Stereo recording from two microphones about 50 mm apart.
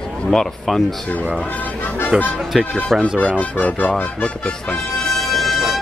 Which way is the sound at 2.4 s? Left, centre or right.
Centre.